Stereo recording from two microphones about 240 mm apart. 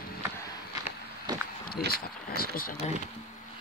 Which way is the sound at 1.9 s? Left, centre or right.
Left.